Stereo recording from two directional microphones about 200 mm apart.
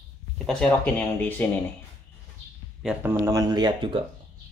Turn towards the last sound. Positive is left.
turn(degrees=-25)  # may be behind; listen again after turning